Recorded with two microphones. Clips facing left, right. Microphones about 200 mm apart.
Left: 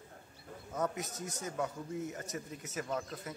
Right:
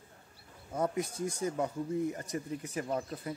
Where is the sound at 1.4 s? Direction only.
30° right (ahead or behind).